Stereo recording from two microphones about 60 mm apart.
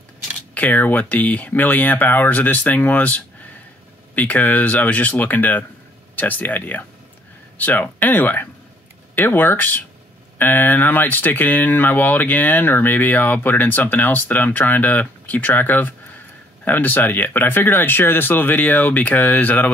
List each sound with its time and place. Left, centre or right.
0.6 s speech: left